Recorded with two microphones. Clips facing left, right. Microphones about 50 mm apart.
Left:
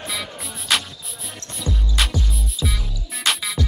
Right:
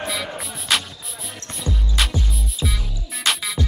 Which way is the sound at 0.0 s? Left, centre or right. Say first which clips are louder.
Right 3 dB; centre.